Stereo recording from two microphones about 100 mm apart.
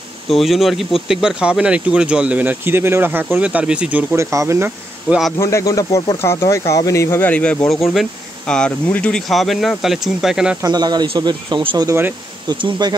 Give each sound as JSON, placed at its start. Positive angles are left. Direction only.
{"t": 0.3, "sound": "speech", "side_deg": 0}
{"t": 4.1, "sound": "speech", "side_deg": -30}
{"t": 5.1, "sound": "speech", "side_deg": -10}
{"t": 5.4, "sound": "speech", "side_deg": 30}
{"t": 7.7, "sound": "speech", "side_deg": 0}
{"t": 9.3, "sound": "speech", "side_deg": 0}
{"t": 10.6, "sound": "speech", "side_deg": -40}